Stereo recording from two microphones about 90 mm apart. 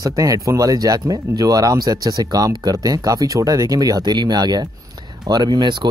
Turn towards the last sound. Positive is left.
turn(degrees=-55)  # may be behind; listen again after turning